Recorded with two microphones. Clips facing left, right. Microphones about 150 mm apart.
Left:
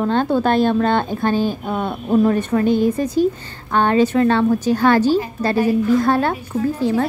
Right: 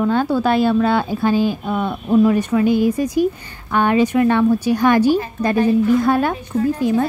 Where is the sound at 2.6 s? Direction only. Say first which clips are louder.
Right 1 dB; 10° right (ahead or behind).